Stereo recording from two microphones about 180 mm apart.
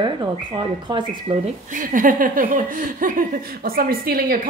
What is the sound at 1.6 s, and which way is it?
Speech, 50° right (ahead or behind).